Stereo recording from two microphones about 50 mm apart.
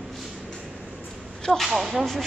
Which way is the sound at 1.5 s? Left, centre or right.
Centre.